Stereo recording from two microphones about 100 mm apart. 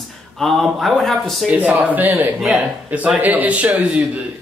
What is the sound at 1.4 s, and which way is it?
A man's voice, 15° right (ahead or behind).